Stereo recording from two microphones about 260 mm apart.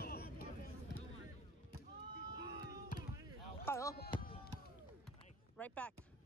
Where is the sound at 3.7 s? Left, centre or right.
Centre.